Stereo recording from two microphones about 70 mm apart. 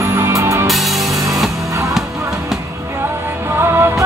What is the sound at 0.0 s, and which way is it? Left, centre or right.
Music, right.